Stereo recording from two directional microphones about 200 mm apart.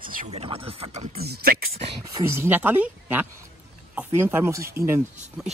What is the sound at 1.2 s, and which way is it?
Speech, 50° right (ahead or behind).